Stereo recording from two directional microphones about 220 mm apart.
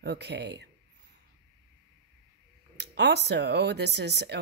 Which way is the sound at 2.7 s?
50° right (ahead or behind).